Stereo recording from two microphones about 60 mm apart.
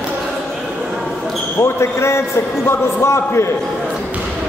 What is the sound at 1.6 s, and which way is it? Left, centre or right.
Speech, left.